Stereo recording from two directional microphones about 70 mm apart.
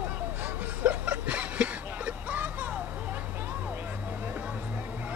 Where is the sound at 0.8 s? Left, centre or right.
Right.